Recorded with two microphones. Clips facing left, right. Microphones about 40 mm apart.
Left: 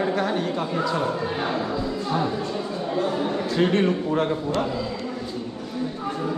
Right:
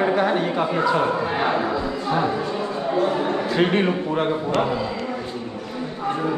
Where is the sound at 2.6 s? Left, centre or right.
Right.